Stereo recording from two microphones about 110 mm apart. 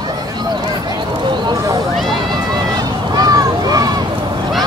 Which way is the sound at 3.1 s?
35° right (ahead or behind).